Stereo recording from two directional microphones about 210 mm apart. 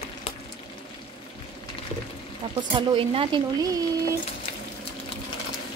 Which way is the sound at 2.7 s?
25° right (ahead or behind).